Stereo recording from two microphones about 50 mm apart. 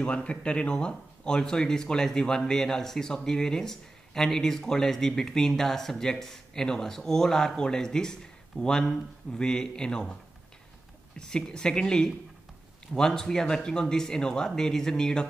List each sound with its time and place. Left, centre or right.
0.0 s speech: left
11.1 s speech: centre